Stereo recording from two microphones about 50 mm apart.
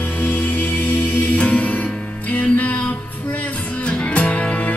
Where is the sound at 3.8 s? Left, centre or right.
Left.